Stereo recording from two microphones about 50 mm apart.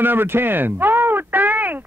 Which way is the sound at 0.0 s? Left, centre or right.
Right.